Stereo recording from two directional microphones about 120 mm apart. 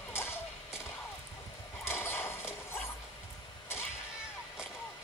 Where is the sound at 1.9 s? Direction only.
20° left (ahead or behind).